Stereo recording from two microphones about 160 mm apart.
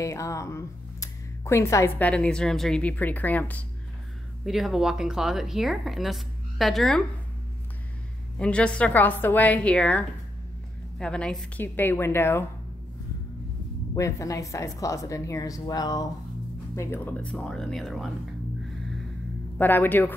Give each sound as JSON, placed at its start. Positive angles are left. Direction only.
{"t": 0.0, "sound": "speech", "side_deg": 20}
{"t": 4.5, "sound": "speech", "side_deg": 0}
{"t": 8.4, "sound": "speech", "side_deg": 5}
{"t": 13.9, "sound": "speech", "side_deg": 20}
{"t": 19.6, "sound": "speech", "side_deg": 10}